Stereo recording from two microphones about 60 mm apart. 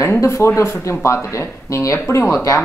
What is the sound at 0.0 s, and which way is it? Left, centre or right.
Speech, left.